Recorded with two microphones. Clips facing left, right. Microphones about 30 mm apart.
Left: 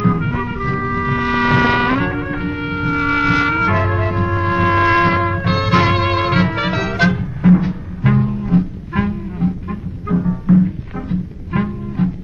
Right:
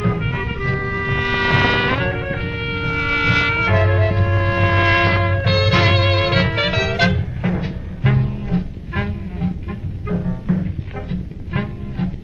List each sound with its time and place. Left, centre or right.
0.0 s music: centre
2.0 s music: centre
2.2 s music: right
2.9 s music: right
5.4 s music: right
5.7 s music: centre
6.4 s music: right
7.0 s music: right
9.4 s music: right
10.1 s music: centre
11.5 s music: centre